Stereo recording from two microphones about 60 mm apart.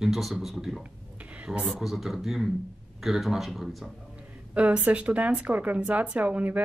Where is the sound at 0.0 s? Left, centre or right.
Centre.